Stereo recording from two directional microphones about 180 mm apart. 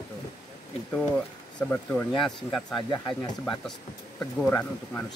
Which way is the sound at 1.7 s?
10° left (ahead or behind).